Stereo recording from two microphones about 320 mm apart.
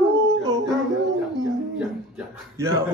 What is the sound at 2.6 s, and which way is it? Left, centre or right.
Speech, centre.